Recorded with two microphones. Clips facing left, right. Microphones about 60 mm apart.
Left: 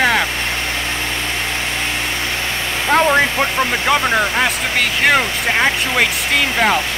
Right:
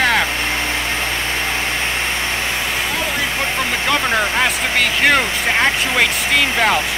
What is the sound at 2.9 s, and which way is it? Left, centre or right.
Speech, left.